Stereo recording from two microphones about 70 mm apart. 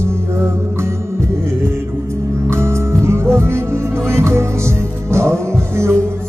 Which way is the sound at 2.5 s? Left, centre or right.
Right.